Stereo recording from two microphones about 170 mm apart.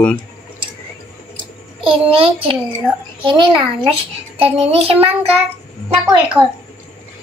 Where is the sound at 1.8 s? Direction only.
30° right (ahead or behind).